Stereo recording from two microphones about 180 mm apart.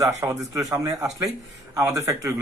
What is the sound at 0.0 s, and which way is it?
Speech, 20° right (ahead or behind).